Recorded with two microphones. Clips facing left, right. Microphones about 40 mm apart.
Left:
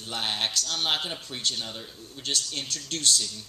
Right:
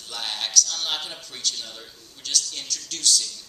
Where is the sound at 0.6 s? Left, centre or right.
Left.